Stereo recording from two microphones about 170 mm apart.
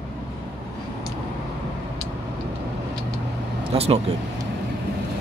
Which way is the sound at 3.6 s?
35° right (ahead or behind).